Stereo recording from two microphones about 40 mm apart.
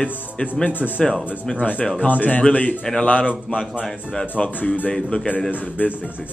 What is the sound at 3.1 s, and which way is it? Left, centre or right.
Speech, left.